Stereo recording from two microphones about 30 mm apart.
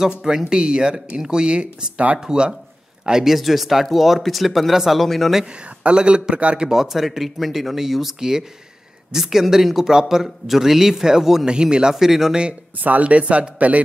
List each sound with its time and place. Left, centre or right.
0.0 s a man's voice: centre; by 2.0 s right
2.1 s speech: right
3.3 s speech: centre
4.9 s speech: centre
5.9 s a man's voice: right
6.7 s speech: centre
11.4 s speech: right
11.9 s speech: centre
12.7 s speech: right
13.0 s a man's voice: right